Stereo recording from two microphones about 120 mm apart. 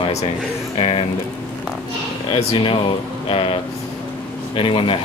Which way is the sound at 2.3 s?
50° left (ahead or behind).